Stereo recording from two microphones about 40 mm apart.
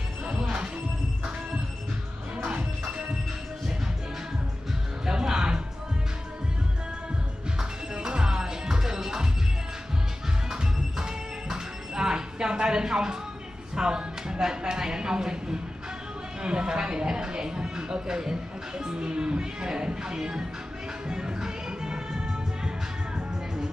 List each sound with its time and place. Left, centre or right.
5.0 s music: centre
7.5 s music: centre
10.5 s music: centre
13.7 s a sound: centre
16.4 s music: right
18.9 s music: right